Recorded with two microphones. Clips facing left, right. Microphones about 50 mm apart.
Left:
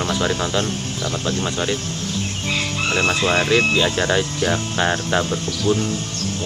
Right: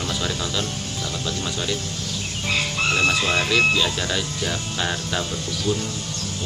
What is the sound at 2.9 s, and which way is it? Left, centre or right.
Speech, left.